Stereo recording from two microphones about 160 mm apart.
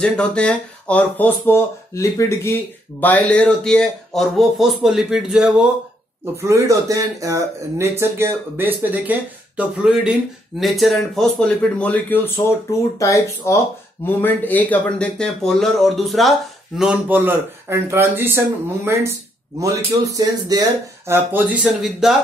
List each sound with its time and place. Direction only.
0.0 s speech: 5° left (ahead or behind)
6.3 s speech: 20° right (ahead or behind)
21.1 s speech: 10° right (ahead or behind)